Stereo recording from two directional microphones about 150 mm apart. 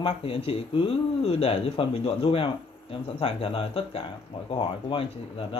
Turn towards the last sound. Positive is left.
turn(degrees=35)  # may be behind; listen again after turning